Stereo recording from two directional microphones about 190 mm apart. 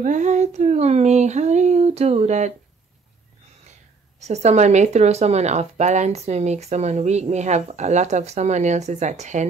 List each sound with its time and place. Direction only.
0.0 s speech: 40° right (ahead or behind)
4.2 s speech: 35° right (ahead or behind)